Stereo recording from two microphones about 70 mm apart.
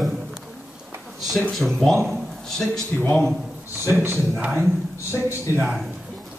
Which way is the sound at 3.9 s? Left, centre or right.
Right.